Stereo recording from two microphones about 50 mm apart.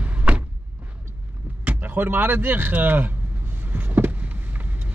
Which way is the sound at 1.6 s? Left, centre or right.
Right.